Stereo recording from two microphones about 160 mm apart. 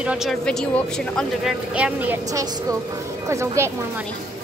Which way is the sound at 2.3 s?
20° right (ahead or behind).